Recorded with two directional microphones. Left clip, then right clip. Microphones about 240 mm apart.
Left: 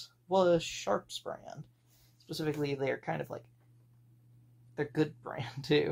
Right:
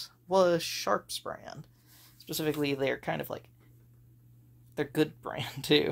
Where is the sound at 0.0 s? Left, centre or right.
Right.